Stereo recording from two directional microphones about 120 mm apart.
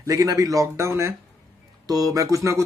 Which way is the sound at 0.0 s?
30° right (ahead or behind).